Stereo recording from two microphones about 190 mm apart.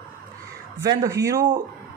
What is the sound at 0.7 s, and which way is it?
Speech, 15° right (ahead or behind).